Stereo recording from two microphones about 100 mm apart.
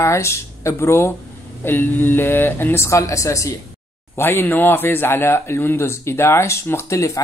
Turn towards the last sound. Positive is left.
turn(degrees=30)  # may be behind; listen again after turning